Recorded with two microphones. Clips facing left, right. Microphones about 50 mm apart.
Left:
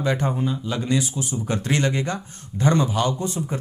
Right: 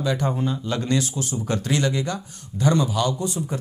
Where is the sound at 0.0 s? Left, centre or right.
Left.